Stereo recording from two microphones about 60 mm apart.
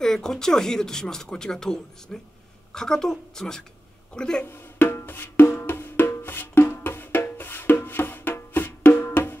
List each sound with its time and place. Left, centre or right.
0.0 s speech: centre
4.5 s wood block: left
6.2 s music: left